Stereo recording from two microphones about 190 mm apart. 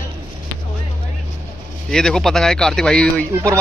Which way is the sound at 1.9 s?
Centre (ahead or behind).